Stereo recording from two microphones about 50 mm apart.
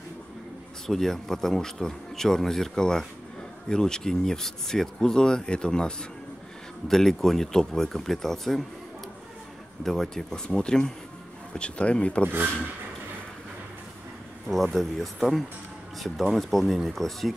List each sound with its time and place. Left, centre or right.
0.8 s speech: centre
6.9 s speech: centre
9.8 s speech: centre; by 12.3 s left
14.5 s speech: centre